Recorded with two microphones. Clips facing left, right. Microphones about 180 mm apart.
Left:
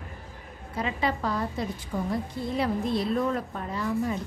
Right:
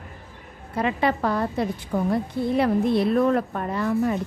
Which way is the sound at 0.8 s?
60° right (ahead or behind).